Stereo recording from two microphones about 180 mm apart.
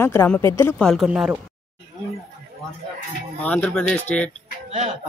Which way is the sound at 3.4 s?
10° left (ahead or behind).